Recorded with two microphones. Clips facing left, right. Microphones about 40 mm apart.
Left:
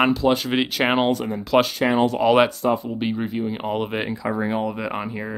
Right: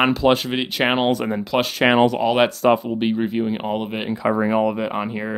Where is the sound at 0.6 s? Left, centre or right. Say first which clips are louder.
Right 1 dB; centre.